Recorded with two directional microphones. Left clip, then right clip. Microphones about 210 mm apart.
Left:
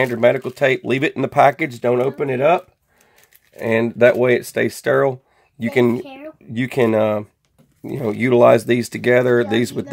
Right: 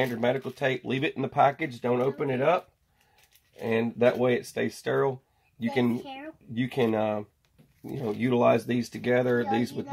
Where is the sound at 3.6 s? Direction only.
55° left (ahead or behind).